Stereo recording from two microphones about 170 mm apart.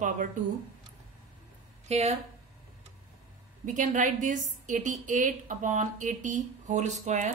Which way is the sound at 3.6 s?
50° right (ahead or behind).